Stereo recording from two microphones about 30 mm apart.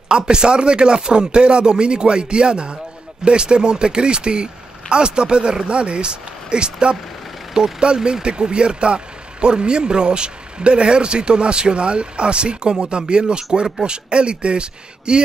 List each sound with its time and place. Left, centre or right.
0.1 s speech: right